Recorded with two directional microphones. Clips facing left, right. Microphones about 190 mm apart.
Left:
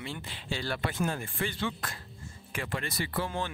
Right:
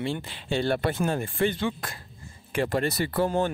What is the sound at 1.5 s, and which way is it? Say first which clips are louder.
Speech: right 5 dB; 20° right (ahead or behind).